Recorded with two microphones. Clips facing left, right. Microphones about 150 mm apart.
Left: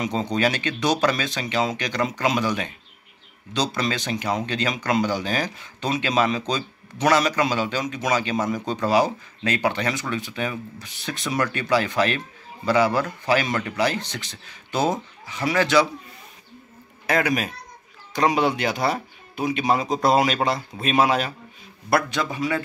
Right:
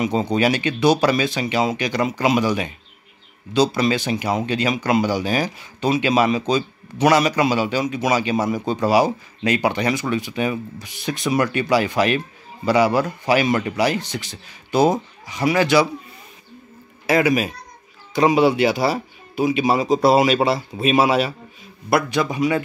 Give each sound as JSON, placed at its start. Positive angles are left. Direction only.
{"t": 0.0, "sound": "speech", "side_deg": -10}
{"t": 17.0, "sound": "speech", "side_deg": -5}